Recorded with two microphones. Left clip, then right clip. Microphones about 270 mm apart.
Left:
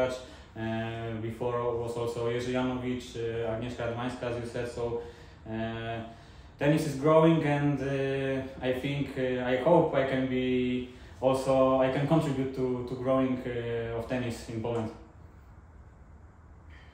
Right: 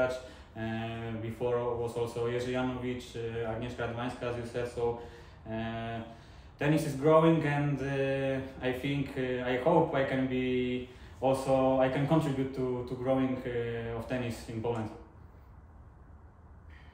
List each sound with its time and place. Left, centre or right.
0.6 s speech: centre